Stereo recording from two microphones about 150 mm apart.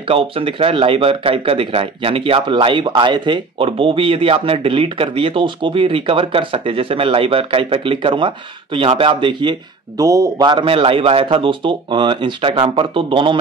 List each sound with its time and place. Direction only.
0.1 s speech: 40° right (ahead or behind)